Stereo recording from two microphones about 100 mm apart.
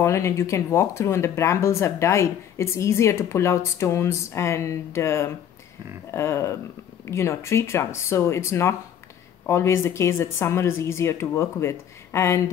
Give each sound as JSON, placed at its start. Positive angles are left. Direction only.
{"t": 0.0, "sound": "speech", "side_deg": 30}